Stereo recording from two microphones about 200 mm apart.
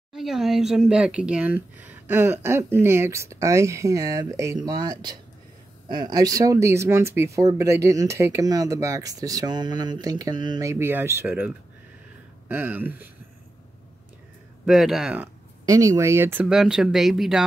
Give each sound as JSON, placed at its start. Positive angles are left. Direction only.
{"t": 0.1, "sound": "speech", "side_deg": 0}
{"t": 14.7, "sound": "speech", "side_deg": 0}
{"t": 15.6, "sound": "speech", "side_deg": -15}